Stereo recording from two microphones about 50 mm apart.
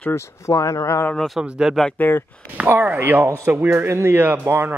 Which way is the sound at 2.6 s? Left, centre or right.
Right.